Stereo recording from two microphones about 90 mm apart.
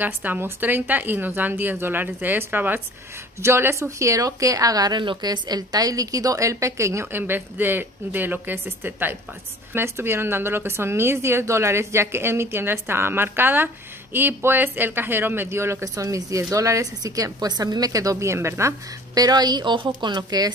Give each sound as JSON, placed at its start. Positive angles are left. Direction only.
{"t": 0.0, "sound": "a woman's voice", "side_deg": -20}
{"t": 19.1, "sound": "a woman's voice", "side_deg": -50}